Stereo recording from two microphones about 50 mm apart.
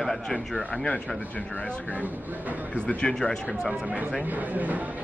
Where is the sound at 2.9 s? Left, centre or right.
Centre.